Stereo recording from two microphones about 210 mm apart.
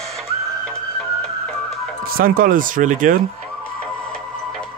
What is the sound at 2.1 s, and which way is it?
Speech, 45° right (ahead or behind).